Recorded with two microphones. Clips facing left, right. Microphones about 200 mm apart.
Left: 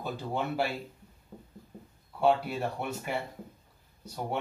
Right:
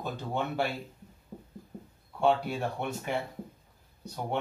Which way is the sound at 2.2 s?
5° left (ahead or behind).